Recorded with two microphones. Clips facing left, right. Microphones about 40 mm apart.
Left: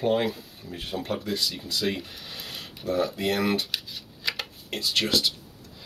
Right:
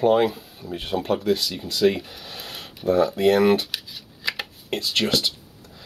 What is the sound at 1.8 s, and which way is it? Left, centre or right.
Speech, right.